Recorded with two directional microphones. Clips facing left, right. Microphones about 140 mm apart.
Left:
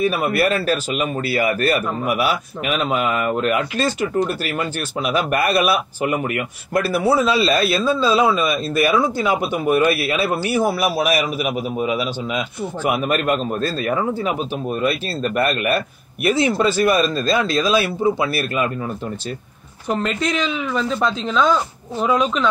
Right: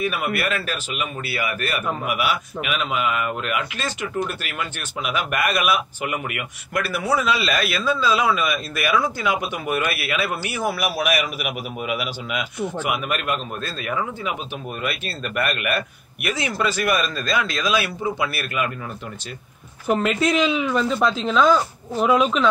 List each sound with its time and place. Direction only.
0.0 s speech: 35° left (ahead or behind)
19.9 s a woman's voice: 5° right (ahead or behind)